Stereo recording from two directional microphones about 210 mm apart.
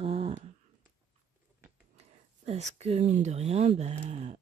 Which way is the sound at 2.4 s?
30° right (ahead or behind).